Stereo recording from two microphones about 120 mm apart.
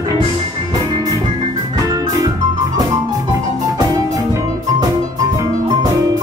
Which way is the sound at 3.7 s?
30° right (ahead or behind).